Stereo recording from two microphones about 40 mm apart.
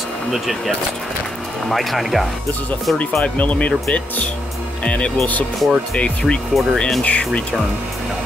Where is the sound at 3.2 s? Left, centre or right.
Left.